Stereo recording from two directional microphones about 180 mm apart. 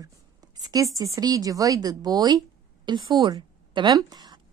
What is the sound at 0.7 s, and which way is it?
A woman's voice, 20° right (ahead or behind).